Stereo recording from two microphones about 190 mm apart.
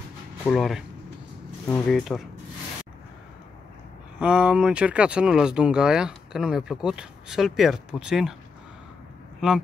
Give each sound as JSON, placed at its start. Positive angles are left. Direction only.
{"t": 0.5, "sound": "speech", "side_deg": 0}
{"t": 4.2, "sound": "speech", "side_deg": -5}